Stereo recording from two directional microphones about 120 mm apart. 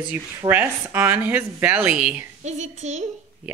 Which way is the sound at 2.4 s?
75° right (ahead or behind).